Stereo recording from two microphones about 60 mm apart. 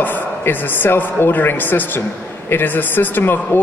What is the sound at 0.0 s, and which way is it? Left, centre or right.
A man's voice, left.